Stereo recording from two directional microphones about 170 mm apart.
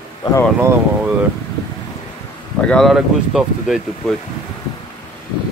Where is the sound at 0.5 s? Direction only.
10° right (ahead or behind).